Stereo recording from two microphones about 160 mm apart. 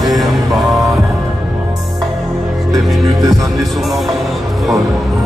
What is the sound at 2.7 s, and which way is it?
Music, 20° right (ahead or behind).